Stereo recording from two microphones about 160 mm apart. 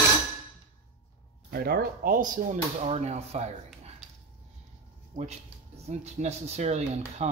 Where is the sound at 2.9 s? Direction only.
40° right (ahead or behind).